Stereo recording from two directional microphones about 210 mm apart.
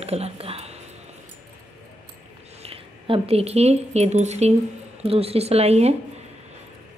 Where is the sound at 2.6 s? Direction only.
25° right (ahead or behind).